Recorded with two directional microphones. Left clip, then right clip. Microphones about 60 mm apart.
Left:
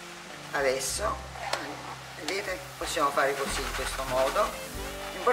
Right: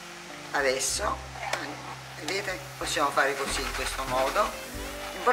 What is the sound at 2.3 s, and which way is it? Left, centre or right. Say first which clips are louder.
Speech: right 2 dB; right.